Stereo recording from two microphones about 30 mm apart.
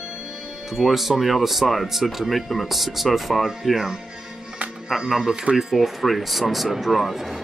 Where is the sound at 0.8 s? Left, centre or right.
Centre.